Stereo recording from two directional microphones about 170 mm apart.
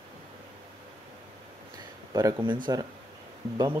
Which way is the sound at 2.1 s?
25° right (ahead or behind).